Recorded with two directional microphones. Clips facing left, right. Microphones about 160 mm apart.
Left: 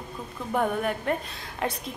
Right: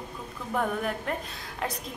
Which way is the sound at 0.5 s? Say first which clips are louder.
Left 3 dB; centre (ahead or behind).